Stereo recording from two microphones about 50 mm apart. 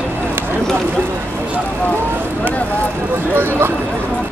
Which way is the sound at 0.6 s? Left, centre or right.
Centre.